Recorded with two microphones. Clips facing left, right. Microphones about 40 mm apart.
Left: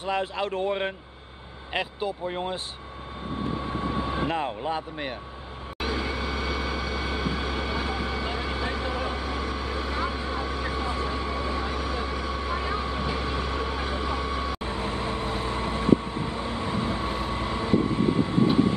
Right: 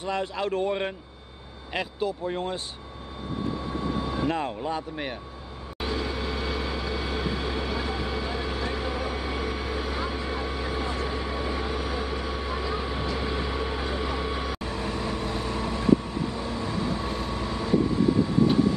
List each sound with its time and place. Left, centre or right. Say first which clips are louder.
0.0 s speech: left 1 dB; centre
3.8 s vehicle: even; left
4.3 s speech: even; centre
5.8 s vehicle: left 1 dB; centre
14.6 s vehicle: left 1 dB; left